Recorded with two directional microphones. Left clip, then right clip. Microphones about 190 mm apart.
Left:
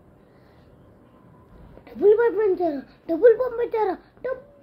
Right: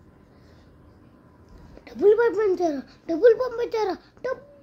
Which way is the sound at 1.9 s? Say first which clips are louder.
Left 1 dB; 15° right (ahead or behind).